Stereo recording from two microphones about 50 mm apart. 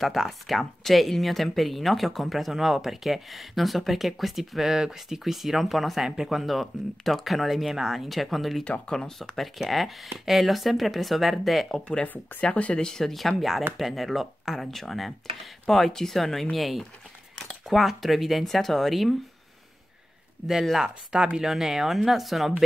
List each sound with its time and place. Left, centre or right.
0.0 s speech: centre
8.8 s speech: centre
9.2 s speech: centre
11.7 s speech: centre
12.1 s speech: left
12.7 s speech: centre
20.7 s speech: centre
21.5 s speech: centre